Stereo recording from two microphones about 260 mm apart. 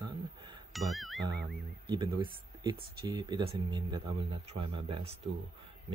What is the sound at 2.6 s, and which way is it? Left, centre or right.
Speech, centre.